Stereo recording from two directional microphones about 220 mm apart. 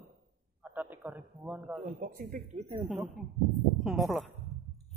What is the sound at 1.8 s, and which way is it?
Speech, 40° right (ahead or behind).